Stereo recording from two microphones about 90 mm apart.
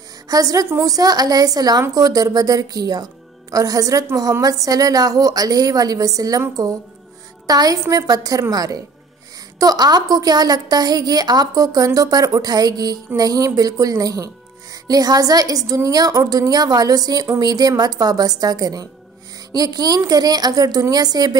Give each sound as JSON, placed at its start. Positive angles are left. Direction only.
{"t": 0.3, "sound": "a woman's voice", "side_deg": -40}
{"t": 7.4, "sound": "a woman's voice", "side_deg": -45}